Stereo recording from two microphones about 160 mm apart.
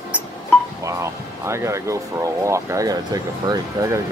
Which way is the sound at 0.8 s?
20° right (ahead or behind).